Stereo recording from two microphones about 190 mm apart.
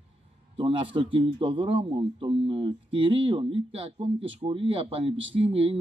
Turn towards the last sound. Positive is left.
turn(degrees=-30)  # may be behind; listen again after turning